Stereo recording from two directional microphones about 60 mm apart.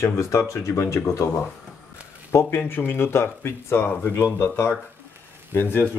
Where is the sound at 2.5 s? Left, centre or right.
Left.